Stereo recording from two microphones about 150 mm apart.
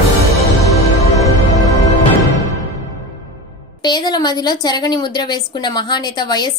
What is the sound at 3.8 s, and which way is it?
A woman's voice, 30° left (ahead or behind).